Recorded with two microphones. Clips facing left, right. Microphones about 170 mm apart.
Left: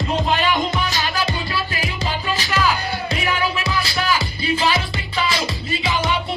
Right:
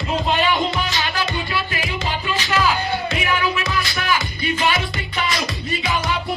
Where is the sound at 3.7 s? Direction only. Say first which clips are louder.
Left 1 dB; 35° left (ahead or behind).